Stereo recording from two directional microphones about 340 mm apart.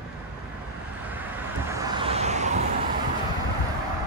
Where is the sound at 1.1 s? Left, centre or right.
Centre.